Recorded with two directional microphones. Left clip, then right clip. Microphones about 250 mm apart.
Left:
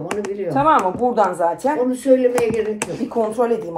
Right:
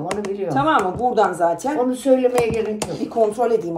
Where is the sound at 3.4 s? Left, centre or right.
Centre.